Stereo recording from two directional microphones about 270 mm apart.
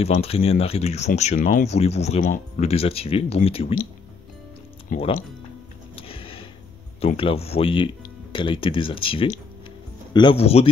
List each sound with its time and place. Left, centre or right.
0.0 s speech: left
4.8 s speech: left
5.9 s a sound: centre
7.0 s speech: left